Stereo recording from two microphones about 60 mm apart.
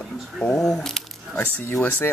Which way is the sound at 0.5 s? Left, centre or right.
Centre.